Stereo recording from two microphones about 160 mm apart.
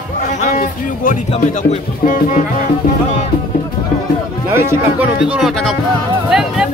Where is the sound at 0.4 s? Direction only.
60° left (ahead or behind).